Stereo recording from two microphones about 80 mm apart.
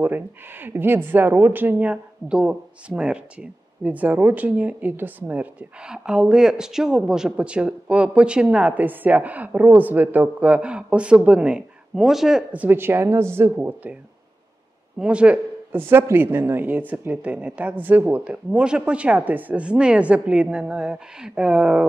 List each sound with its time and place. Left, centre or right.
0.0 s speech: right; by 12.4 s centre
12.5 s speech: right
15.0 s speech: centre
15.7 s speech: right